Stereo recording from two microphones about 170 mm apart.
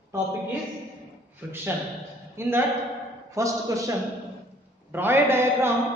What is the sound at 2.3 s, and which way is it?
A man's voice, 15° right (ahead or behind).